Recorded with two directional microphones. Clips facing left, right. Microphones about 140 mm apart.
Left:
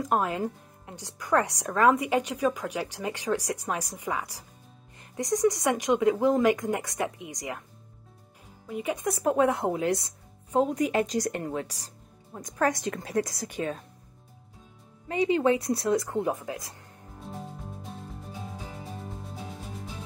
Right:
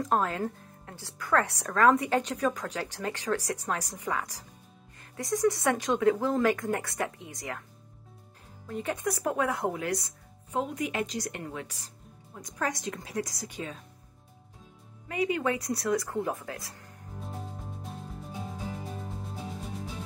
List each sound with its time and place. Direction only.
0.0 s speech: 10° left (ahead or behind)
8.6 s speech: 10° left (ahead or behind)
9.2 s speech: 25° left (ahead or behind)
12.4 s a woman's voice: 55° left (ahead or behind)
15.0 s speech: 30° left (ahead or behind)